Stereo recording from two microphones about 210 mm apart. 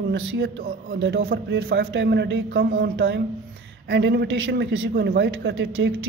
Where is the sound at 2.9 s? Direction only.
60° right (ahead or behind).